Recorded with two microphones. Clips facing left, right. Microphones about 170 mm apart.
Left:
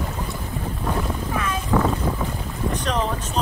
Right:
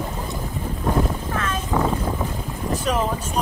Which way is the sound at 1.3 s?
10° left (ahead or behind).